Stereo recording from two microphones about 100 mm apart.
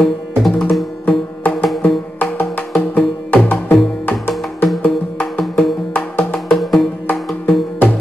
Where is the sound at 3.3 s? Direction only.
20° left (ahead or behind).